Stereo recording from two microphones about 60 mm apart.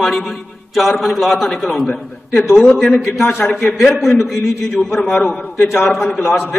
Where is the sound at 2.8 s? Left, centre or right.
Left.